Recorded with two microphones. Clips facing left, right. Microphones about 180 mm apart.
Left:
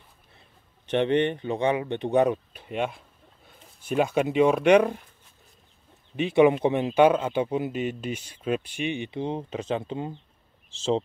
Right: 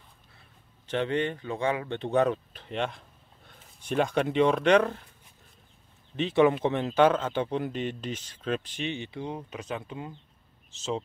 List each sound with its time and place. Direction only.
0.4 s speech: 20° left (ahead or behind)
6.1 s a man's voice: 10° left (ahead or behind); by 11.0 s 30° left (ahead or behind)